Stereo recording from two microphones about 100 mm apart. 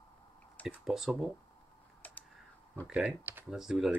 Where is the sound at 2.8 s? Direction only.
10° right (ahead or behind).